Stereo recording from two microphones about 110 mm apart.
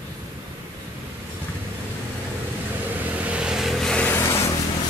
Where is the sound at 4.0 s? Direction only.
20° left (ahead or behind).